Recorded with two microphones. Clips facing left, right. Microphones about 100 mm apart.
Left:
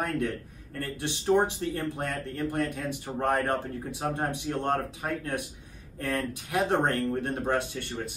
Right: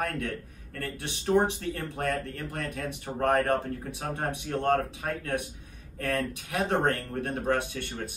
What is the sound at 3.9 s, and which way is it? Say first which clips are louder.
Speech: left 4 dB; 25° left (ahead or behind).